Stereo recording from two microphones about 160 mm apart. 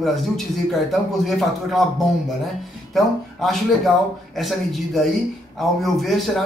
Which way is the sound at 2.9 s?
Centre (ahead or behind).